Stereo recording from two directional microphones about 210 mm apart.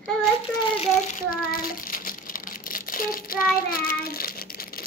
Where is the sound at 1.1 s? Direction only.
40° left (ahead or behind).